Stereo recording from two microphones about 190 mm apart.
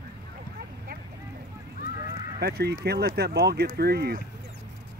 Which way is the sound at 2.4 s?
55° right (ahead or behind).